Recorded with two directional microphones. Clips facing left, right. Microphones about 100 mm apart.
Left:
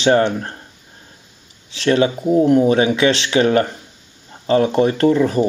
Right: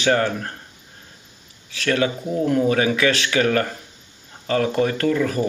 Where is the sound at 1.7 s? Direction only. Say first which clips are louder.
Left 5 dB; 25° left (ahead or behind).